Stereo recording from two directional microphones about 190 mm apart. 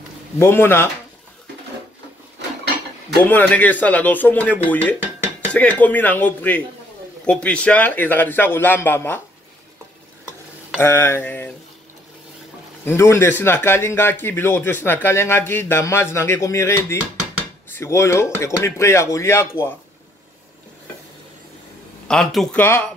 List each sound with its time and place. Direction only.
0.4 s a man's voice: 10° left (ahead or behind)
3.3 s a man's voice: 10° left (ahead or behind)
10.8 s a man's voice: 15° left (ahead or behind)
12.8 s a man's voice: 15° left (ahead or behind)
22.0 s speech: centre (ahead or behind)